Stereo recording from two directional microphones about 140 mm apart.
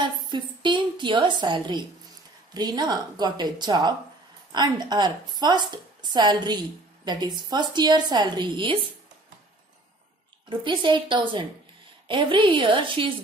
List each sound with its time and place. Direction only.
0.0 s a sound: 35° right (ahead or behind)
2.5 s a woman's voice: 30° right (ahead or behind)
10.5 s a woman's voice: 35° right (ahead or behind)